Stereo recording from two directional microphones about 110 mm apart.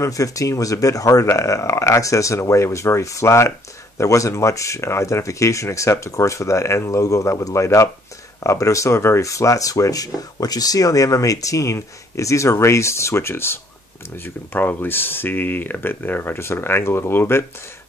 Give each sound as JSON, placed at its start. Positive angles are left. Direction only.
{"t": 0.0, "sound": "speech", "side_deg": 30}